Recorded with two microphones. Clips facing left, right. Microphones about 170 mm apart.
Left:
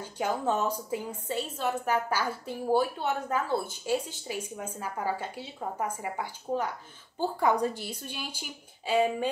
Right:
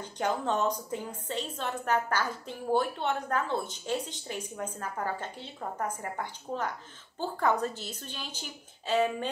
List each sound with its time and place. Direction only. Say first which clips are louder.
0.0 s a woman's voice: left 1 dB; 10° left (ahead or behind)